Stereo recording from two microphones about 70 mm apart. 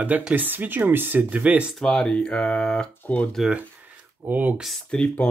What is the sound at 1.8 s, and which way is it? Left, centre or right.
Speech, centre.